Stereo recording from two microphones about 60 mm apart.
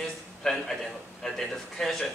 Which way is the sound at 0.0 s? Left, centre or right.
Centre.